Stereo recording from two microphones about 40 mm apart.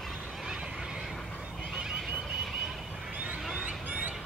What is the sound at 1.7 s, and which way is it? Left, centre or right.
Neigh, centre.